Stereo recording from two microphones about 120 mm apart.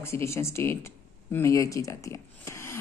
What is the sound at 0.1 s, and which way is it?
A woman's voice, 20° left (ahead or behind).